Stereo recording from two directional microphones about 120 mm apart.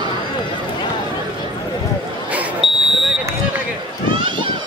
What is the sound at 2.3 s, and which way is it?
Smoke detector, centre (ahead or behind).